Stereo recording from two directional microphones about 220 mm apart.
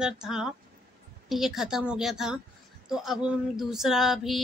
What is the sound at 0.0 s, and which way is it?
A woman's voice, 5° right (ahead or behind).